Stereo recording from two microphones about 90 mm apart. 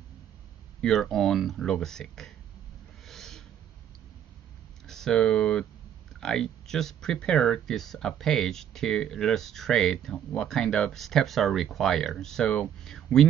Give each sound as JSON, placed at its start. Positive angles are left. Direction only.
{"t": 0.7, "sound": "speech", "side_deg": 5}
{"t": 3.1, "sound": "owl", "side_deg": 5}
{"t": 4.8, "sound": "speech", "side_deg": 5}